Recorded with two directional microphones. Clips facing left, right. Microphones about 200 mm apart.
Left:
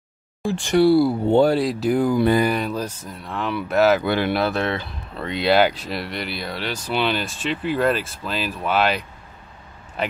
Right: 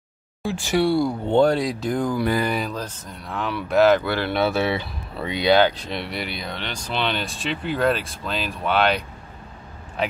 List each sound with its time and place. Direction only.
0.4 s speech: centre (ahead or behind)
2.1 s mantra: 25° left (ahead or behind)
2.4 s speech: 5° left (ahead or behind)
4.0 s speech: 20° left (ahead or behind)
4.3 s speech: centre (ahead or behind)